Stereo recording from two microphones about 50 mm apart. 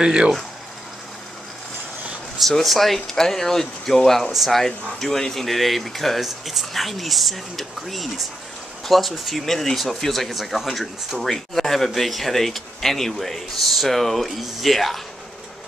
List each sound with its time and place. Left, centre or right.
0.0 s speech: centre
2.5 s speech: centre